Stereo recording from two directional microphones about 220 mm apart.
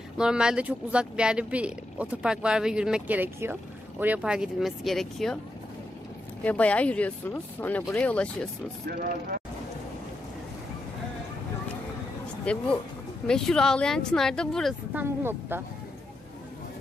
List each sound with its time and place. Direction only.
0.2 s speech: 5° right (ahead or behind)
6.4 s speech: 5° left (ahead or behind)
8.8 s speech: 45° right (ahead or behind)
12.5 s speech: 5° left (ahead or behind)
15.0 s a woman's voice: 10° right (ahead or behind)